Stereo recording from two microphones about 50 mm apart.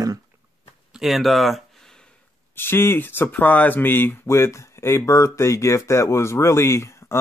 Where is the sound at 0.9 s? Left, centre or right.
Centre.